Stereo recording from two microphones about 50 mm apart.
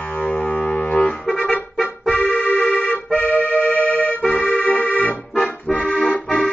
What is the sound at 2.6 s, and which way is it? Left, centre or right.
Accordion, left.